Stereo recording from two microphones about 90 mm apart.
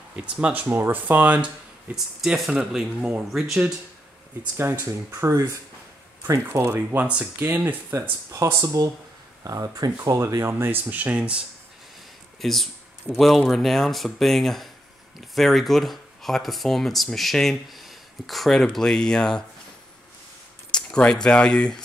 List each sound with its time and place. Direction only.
0.1 s speech: 15° right (ahead or behind)
2.2 s speech: 5° right (ahead or behind)
4.6 s speech: 25° right (ahead or behind); by 9.9 s 40° right (ahead or behind)
10.1 s speech: 30° right (ahead or behind); by 11.4 s 10° right (ahead or behind)
12.4 s speech: centre (ahead or behind)
20.7 s speech: 10° left (ahead or behind)